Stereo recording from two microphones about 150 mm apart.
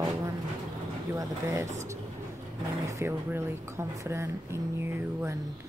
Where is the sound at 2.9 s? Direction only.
15° right (ahead or behind).